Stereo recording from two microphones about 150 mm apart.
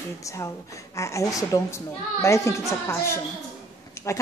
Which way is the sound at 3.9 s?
20° left (ahead or behind).